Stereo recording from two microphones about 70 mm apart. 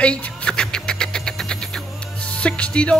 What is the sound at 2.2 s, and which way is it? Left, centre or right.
Music, centre.